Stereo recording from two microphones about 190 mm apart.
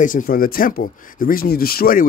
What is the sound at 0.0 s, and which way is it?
A man's voice, 45° left (ahead or behind).